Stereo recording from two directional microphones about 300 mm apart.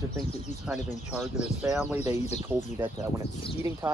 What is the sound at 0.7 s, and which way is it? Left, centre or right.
Speech, centre.